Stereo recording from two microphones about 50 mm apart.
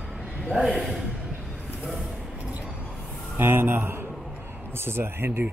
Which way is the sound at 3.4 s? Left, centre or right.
Right.